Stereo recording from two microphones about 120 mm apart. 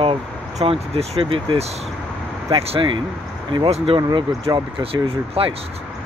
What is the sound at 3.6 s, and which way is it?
Speech, 60° right (ahead or behind).